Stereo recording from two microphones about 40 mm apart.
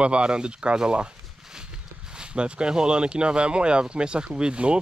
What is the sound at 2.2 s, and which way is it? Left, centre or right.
Speech, right.